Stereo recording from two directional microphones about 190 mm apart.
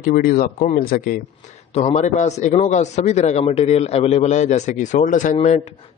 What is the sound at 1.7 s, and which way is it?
A man's voice, 35° left (ahead or behind).